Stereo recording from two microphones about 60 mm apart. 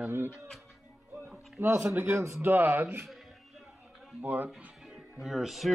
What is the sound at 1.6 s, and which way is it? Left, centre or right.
Speech, right.